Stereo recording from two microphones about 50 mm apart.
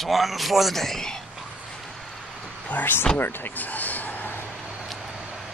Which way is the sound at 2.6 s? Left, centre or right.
Left.